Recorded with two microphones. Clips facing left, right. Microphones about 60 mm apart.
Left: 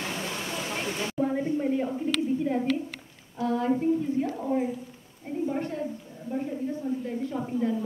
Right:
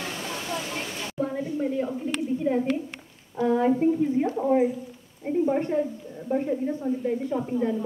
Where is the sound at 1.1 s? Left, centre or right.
Centre.